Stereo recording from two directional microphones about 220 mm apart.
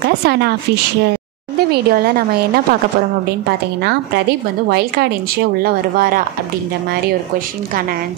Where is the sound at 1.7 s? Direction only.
45° right (ahead or behind).